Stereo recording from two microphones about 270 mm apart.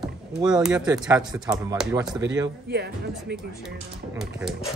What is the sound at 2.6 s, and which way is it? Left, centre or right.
Speech, right.